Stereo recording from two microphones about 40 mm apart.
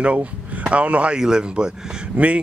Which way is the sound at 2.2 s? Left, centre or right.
Right.